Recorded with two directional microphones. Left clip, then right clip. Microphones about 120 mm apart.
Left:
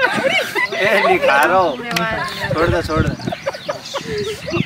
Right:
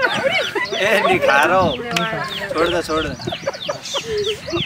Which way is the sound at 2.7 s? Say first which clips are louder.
Left 1 dB; centre (ahead or behind).